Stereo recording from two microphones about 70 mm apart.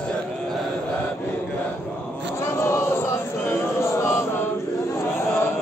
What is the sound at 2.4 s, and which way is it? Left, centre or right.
Choir, left.